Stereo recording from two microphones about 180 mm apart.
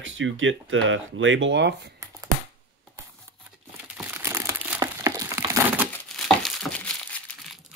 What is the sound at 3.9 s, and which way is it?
Crumpling, 10° right (ahead or behind).